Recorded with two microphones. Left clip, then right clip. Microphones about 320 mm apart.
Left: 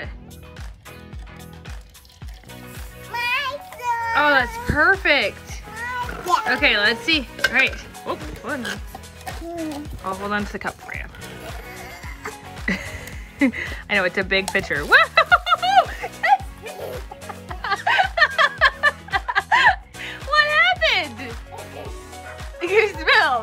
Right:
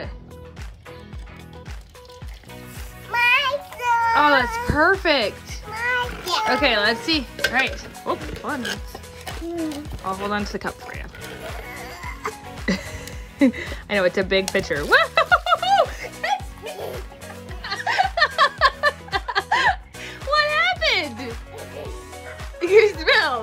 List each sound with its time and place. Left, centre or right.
3.2 s children playing: centre
5.8 s music: centre
6.1 s music: centre